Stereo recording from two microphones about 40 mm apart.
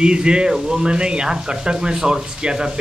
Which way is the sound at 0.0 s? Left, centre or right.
Right.